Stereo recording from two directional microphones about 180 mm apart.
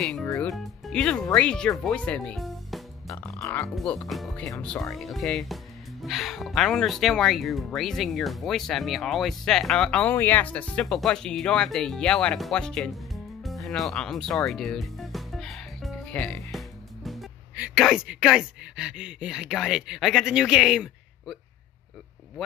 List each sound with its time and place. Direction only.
0.0 s speech: centre (ahead or behind)
3.1 s music: 15° left (ahead or behind)
3.6 s speech: 5° left (ahead or behind)